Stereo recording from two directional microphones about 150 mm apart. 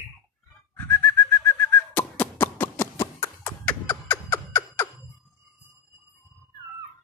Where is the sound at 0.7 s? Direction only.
10° left (ahead or behind).